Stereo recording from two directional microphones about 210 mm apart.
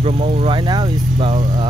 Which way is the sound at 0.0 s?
30° right (ahead or behind).